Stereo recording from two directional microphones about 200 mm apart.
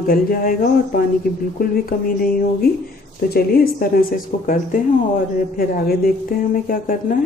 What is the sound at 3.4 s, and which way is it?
Speech, 50° left (ahead or behind).